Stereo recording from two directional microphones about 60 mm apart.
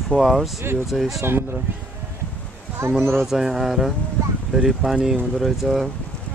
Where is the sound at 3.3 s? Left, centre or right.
Centre.